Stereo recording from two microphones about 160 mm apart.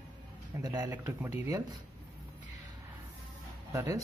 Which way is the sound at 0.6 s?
25° right (ahead or behind).